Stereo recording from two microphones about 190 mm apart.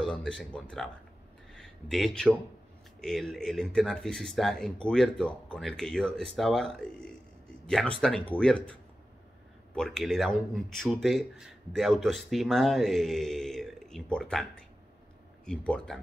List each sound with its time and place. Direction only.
0.0 s speech: 5° left (ahead or behind)
1.5 s a sound: 5° left (ahead or behind)
3.0 s speech: centre (ahead or behind)
9.8 s speech: centre (ahead or behind)